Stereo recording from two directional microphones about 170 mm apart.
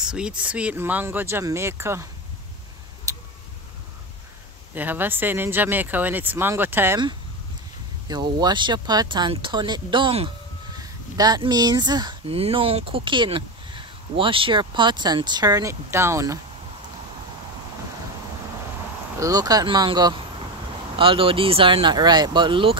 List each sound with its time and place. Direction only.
0.0 s speech: 5° right (ahead or behind)
3.1 s tick-tock: 20° right (ahead or behind)
4.7 s speech: 10° right (ahead or behind)
8.1 s speech: 25° right (ahead or behind)
19.1 s speech: 20° right (ahead or behind)